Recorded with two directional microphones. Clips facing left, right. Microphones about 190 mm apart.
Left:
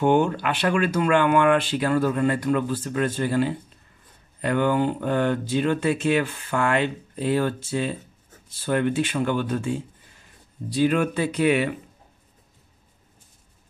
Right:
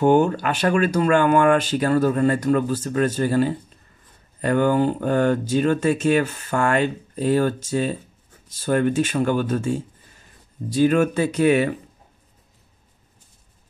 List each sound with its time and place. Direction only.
0.0 s speech: 40° right (ahead or behind)